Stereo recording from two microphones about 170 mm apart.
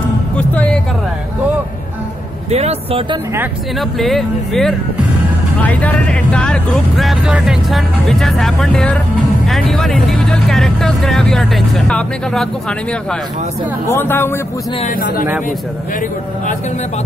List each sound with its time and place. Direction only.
2.5 s speech: 35° right (ahead or behind)
4.0 s speech: centre (ahead or behind)
13.8 s speech: 15° left (ahead or behind)
14.9 s speech: 55° left (ahead or behind)